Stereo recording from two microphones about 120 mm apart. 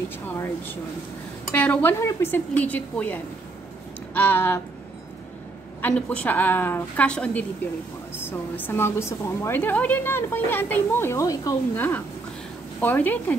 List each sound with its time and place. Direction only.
1.5 s a woman's voice: 10° left (ahead or behind)
5.8 s a woman's voice: 15° left (ahead or behind)
11.7 s a woman's voice: 15° left (ahead or behind)